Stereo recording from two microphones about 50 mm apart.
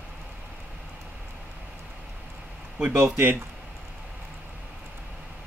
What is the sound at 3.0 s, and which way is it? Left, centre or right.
Speech, right.